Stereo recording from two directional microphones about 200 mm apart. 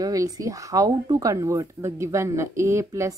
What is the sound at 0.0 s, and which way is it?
A woman's voice, 15° right (ahead or behind).